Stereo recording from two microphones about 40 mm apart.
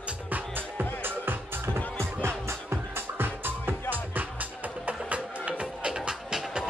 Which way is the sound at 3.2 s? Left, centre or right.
Right.